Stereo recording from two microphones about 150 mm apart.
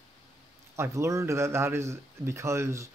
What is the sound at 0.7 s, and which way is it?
A man's voice, 20° right (ahead or behind).